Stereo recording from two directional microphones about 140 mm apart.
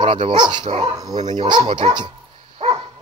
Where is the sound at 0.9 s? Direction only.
25° right (ahead or behind).